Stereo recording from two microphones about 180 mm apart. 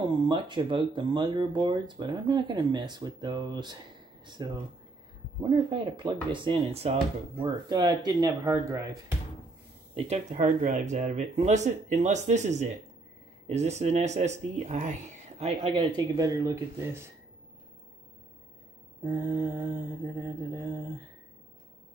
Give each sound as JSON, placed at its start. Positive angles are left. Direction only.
{"t": 0.3, "sound": "speech", "side_deg": -25}
{"t": 9.9, "sound": "speech", "side_deg": -35}
{"t": 15.7, "sound": "speech", "side_deg": -20}
{"t": 19.0, "sound": "mantra", "side_deg": -15}